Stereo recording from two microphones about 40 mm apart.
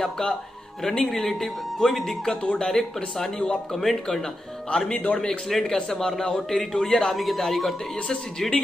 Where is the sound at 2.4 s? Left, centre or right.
Left.